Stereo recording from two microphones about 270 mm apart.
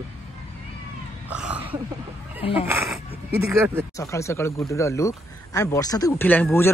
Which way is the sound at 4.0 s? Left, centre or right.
Centre.